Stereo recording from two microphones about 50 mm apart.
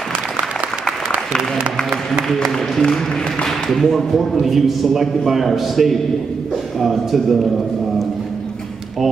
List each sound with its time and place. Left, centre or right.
1.1 s speech: centre
2.2 s a man's voice: centre